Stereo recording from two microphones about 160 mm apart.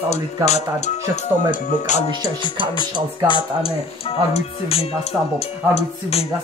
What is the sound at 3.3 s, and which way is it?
Speech, 30° left (ahead or behind).